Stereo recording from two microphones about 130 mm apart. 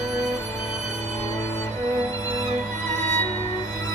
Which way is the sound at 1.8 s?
25° left (ahead or behind).